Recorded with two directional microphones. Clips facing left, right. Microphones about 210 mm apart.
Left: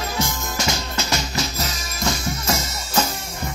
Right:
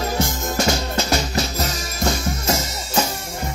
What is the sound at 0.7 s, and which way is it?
Music, 35° right (ahead or behind).